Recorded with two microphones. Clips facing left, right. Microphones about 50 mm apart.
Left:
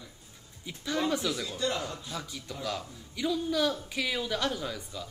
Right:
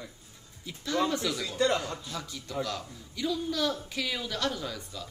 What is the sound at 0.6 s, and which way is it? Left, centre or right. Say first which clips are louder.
Speech: right 1 dB; centre.